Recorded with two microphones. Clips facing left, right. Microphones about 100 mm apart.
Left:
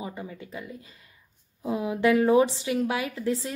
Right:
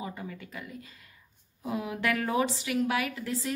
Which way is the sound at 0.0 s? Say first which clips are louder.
Left 2 dB; 20° left (ahead or behind).